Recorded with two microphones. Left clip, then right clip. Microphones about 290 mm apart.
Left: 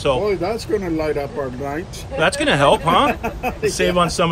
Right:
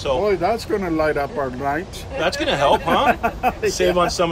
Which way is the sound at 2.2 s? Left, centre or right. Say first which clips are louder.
Left 3 dB; left.